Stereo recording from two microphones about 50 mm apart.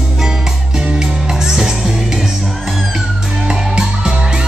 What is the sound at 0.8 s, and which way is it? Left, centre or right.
Music, centre.